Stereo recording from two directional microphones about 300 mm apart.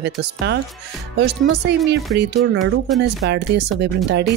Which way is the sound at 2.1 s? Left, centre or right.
Right.